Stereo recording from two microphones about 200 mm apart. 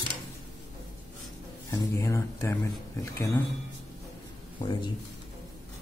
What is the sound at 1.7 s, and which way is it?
Speech, 15° left (ahead or behind).